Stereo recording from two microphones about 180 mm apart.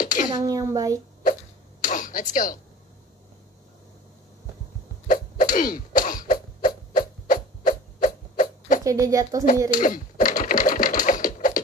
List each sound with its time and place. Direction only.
0.0 s a sound: 45° left (ahead or behind)
0.5 s a woman's voice: 20° right (ahead or behind)
1.8 s a sound: 45° left (ahead or behind)
5.0 s sneeze: 45° left (ahead or behind)
8.8 s a woman's voice: 20° right (ahead or behind)
9.7 s typewriter: 45° left (ahead or behind)